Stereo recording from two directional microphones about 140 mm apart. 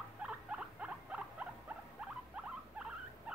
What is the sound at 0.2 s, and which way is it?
Rodents, 10° right (ahead or behind).